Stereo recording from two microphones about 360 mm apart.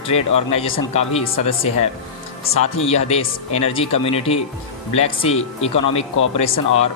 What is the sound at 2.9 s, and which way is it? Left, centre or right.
A man's voice, centre.